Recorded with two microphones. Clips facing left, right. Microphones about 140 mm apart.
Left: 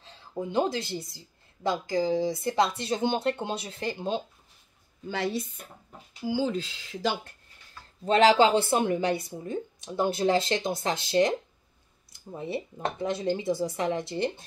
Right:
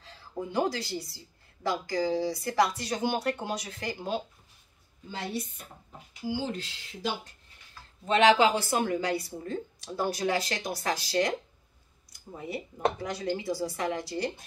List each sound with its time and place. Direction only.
0.0 s a woman's voice: 20° left (ahead or behind)
5.0 s a woman's voice: 85° left
7.0 s a woman's voice: 90° left
8.0 s a woman's voice: 35° left (ahead or behind)
12.4 s a woman's voice: 25° left (ahead or behind)